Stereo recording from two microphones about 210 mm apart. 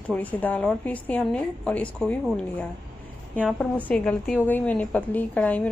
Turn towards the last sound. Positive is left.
turn(degrees=5)  # may be behind; listen again after turning